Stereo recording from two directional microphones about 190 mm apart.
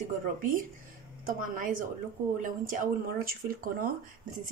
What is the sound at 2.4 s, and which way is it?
Speech, 45° right (ahead or behind).